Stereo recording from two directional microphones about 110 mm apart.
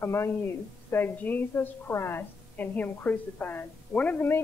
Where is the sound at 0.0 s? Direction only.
25° left (ahead or behind).